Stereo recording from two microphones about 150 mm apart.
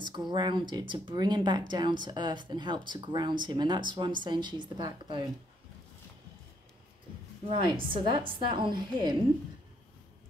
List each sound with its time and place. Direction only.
0.3 s speech: 30° right (ahead or behind)
7.4 s speech: 35° right (ahead or behind)